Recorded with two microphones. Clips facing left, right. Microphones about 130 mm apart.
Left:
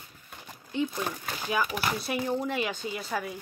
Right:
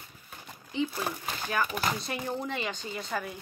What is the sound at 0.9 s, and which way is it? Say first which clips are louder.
Speech: left 1 dB; 5° right (ahead or behind).